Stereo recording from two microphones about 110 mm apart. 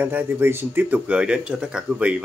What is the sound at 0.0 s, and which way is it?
Speech, 20° right (ahead or behind).